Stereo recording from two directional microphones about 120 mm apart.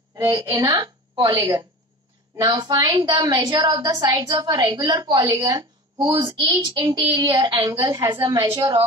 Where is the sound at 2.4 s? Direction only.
35° right (ahead or behind).